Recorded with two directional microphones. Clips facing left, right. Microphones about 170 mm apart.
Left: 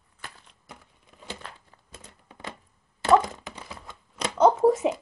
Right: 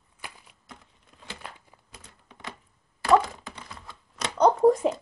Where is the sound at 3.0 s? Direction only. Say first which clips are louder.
Left 1 dB; 20° left (ahead or behind).